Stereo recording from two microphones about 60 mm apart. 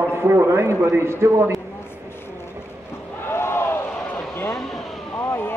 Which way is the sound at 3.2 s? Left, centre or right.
Left.